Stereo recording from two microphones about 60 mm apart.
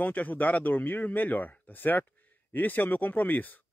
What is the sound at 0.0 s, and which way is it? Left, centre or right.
Speech, left.